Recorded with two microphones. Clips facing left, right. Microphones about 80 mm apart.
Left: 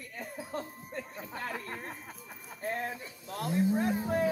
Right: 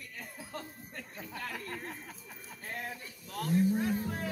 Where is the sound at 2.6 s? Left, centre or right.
Left.